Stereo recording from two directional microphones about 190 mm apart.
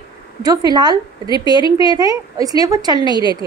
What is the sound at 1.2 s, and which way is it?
Speech, 25° left (ahead or behind).